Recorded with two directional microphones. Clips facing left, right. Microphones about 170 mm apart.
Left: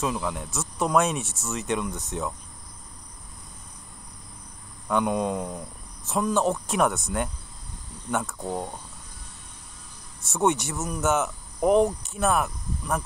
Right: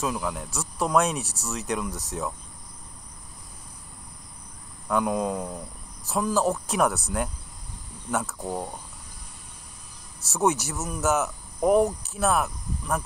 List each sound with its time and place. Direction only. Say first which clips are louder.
0.0 s cricket: left 1 dB; centre (ahead or behind)
4.8 s cricket: even; centre (ahead or behind)
10.2 s cricket: even; centre (ahead or behind)